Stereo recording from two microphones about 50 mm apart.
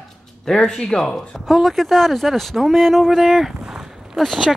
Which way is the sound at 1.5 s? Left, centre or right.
Centre.